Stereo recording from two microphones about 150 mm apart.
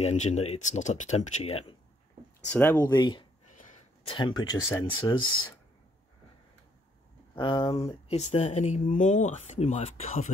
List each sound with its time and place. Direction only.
0.0 s speech: 50° left (ahead or behind)
2.4 s speech: 10° left (ahead or behind)
2.8 s speech: 25° left (ahead or behind)
3.5 s a sound: 55° left (ahead or behind)
4.0 s speech: 35° left (ahead or behind)
7.3 s speech: 35° left (ahead or behind)